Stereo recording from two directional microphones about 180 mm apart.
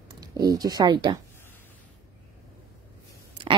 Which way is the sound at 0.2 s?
20° right (ahead or behind).